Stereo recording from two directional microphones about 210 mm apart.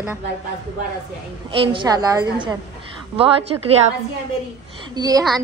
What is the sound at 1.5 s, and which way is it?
A woman's voice, 25° right (ahead or behind).